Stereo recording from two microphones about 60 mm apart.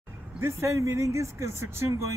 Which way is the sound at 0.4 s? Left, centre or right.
Right.